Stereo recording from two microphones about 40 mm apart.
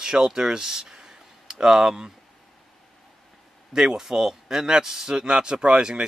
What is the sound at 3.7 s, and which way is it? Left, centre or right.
A man's voice, centre.